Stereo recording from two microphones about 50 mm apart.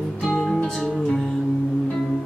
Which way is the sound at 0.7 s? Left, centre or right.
Centre.